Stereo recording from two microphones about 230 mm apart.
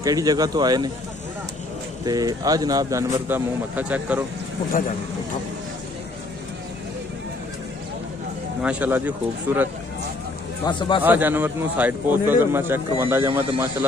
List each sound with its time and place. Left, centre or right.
0.0 s a man's voice: centre
2.0 s a man's voice: centre
8.6 s a man's voice: centre
10.6 s a man's voice: centre
11.1 s a man's voice: centre